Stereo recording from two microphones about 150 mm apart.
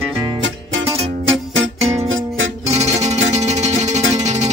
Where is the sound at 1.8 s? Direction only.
45° right (ahead or behind).